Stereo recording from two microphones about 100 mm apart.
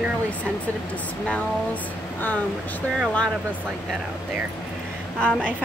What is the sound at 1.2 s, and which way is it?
A woman's voice, 15° left (ahead or behind).